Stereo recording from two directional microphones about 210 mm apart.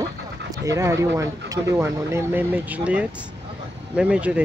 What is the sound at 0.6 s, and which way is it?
Speech, 15° right (ahead or behind).